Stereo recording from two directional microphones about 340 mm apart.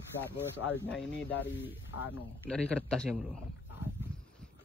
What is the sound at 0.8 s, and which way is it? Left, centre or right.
Speech, centre.